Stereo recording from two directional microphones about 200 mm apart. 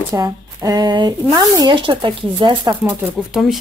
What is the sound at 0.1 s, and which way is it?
Speech, 20° right (ahead or behind).